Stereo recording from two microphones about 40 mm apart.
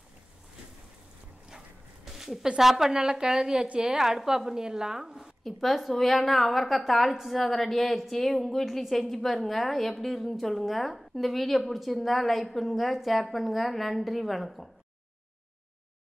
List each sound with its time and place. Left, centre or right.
2.0 s a sound: centre
2.6 s a woman's voice: centre
5.1 s a woman's voice: centre